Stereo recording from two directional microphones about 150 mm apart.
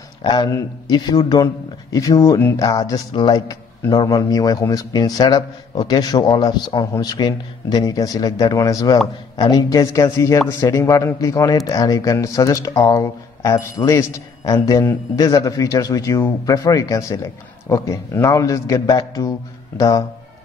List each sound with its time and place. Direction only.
0.2 s speech: 30° left (ahead or behind)